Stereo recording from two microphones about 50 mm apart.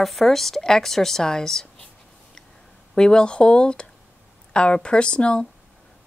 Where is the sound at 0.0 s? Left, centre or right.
Centre.